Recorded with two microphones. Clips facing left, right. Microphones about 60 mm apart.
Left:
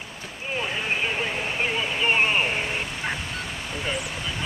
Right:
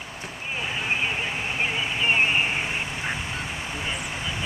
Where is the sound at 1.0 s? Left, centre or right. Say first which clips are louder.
Left 1 dB; centre.